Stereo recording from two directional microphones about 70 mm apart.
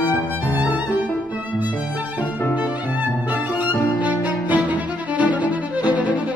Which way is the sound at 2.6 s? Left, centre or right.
Right.